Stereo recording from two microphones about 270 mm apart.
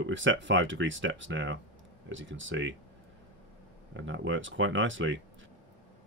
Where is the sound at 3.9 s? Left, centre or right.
Right.